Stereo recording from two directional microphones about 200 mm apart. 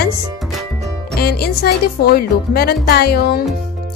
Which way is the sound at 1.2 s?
50° left (ahead or behind).